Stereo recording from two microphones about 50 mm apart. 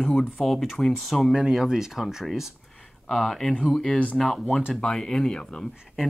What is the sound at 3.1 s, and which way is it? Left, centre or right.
Speech, centre.